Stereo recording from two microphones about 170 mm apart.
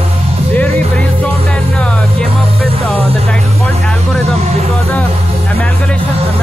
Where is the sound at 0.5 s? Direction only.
10° left (ahead or behind).